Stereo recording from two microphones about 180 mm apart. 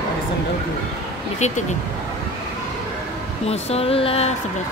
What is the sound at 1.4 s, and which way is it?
Speech, 40° left (ahead or behind).